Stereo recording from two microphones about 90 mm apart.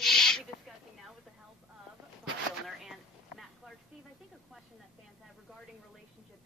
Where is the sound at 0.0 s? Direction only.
5° left (ahead or behind).